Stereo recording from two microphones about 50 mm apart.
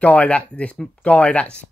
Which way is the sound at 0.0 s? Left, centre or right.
Left.